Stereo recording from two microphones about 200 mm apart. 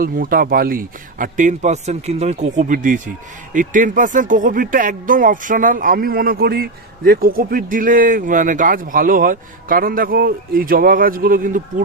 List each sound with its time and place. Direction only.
0.0 s speech: 45° right (ahead or behind)